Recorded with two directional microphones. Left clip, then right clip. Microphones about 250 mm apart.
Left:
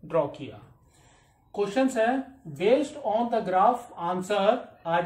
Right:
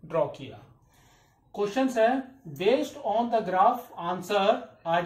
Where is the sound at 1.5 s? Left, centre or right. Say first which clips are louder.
Left 1 dB; centre.